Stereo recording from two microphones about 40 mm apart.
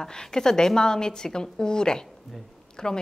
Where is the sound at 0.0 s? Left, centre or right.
Centre.